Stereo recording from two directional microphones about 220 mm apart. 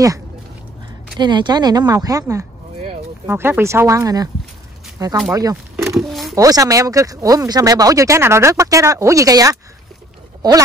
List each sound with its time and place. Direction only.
1.2 s speech: 20° right (ahead or behind)
5.8 s a sound: centre (ahead or behind)
6.3 s speech: 15° right (ahead or behind)